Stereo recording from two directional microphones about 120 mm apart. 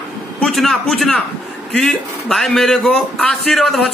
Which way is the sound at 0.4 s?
Centre (ahead or behind).